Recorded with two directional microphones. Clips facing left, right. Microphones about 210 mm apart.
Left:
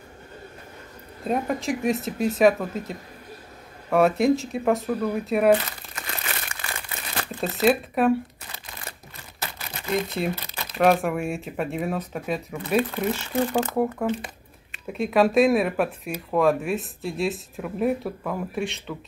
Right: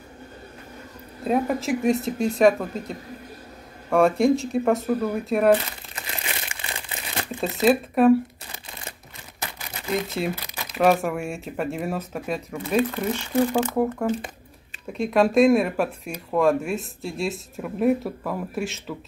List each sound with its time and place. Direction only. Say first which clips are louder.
1.2 s speech: right 2 dB; centre (ahead or behind)
5.9 s crumpling: even; 20° right (ahead or behind)
7.6 s speech: right 2 dB; centre (ahead or behind)
9.8 s speech: even; centre (ahead or behind)
10.3 s crumpling: even; 15° right (ahead or behind)
10.8 s speech: even; centre (ahead or behind)
14.9 s speech: even; centre (ahead or behind)